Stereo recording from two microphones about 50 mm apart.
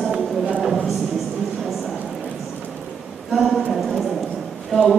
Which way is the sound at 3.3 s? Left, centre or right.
Centre.